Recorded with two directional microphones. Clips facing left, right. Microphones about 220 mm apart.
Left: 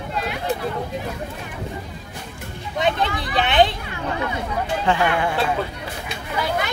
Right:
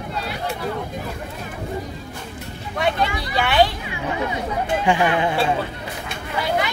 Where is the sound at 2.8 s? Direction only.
20° left (ahead or behind).